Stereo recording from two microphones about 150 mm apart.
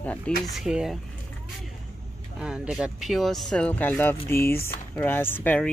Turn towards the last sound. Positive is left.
turn(degrees=10)  # may be behind; listen again after turning